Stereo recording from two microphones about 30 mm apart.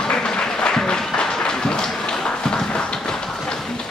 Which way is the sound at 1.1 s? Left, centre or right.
Left.